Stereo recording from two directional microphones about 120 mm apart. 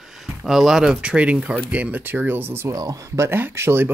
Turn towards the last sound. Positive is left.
turn(degrees=-20)  # may be behind; listen again after turning